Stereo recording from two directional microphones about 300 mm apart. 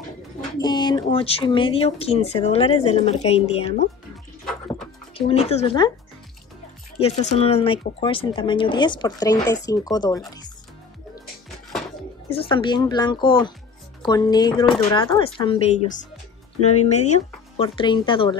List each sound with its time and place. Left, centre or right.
0.6 s speech: centre
5.1 s speech: centre
7.0 s speech: left
12.3 s speech: centre